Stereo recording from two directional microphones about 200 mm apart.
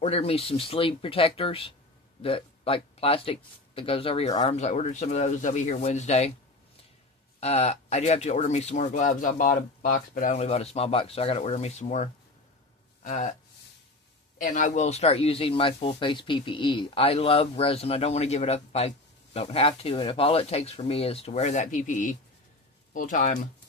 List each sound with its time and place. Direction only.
0.0 s speech: 30° left (ahead or behind)
7.3 s speech: 30° left (ahead or behind)
14.4 s speech: 40° left (ahead or behind)